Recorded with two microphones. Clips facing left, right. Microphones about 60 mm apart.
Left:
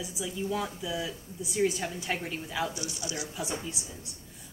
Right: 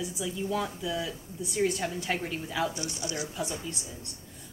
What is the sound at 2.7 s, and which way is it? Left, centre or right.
Speech, right.